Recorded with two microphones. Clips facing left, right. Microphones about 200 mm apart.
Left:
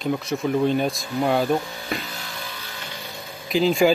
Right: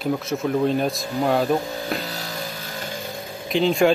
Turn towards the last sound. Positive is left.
turn(degrees=0)  # may be behind; listen again after turning